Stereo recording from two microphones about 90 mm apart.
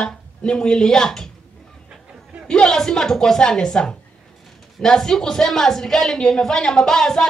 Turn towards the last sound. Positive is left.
turn(degrees=5)  # may be behind; listen again after turning